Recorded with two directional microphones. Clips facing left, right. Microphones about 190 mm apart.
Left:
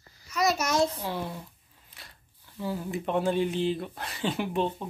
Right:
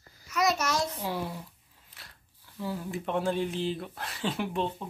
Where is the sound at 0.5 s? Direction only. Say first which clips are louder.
Left 4 dB; 20° left (ahead or behind).